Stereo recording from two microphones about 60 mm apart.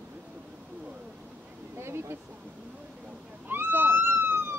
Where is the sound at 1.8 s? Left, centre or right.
Right.